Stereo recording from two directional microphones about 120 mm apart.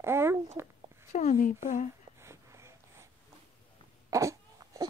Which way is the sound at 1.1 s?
80° left.